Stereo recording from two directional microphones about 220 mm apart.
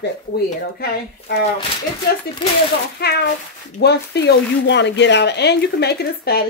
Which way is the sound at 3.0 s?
45° left (ahead or behind).